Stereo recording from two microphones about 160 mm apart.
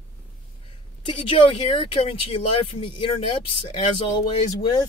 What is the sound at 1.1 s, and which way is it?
Speech, 35° left (ahead or behind).